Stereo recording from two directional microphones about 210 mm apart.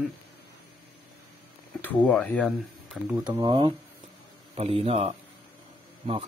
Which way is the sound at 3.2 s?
20° right (ahead or behind).